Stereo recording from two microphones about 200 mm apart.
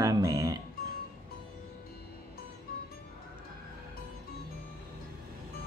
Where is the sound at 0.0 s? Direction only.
20° right (ahead or behind).